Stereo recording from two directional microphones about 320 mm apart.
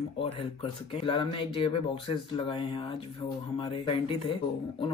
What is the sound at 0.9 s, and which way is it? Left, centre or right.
Speech, centre.